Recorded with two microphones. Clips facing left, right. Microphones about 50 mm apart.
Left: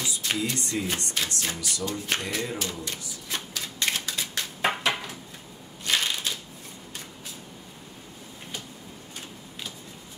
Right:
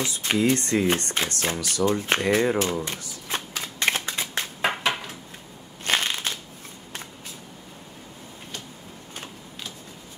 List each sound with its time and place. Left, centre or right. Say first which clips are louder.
0.0 s speech: right 6 dB; right
0.8 s speech: right 6 dB; right
1.9 s speech: right 7 dB; right
2.6 s shuffling cards: right 7 dB; right
4.6 s a sound: right 1 dB; right
5.9 s crushing: right 2 dB; right